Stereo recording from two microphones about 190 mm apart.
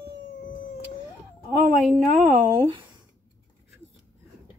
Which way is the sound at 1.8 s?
Centre (ahead or behind).